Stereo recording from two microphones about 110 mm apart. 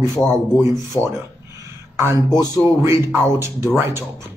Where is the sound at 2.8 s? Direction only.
25° right (ahead or behind).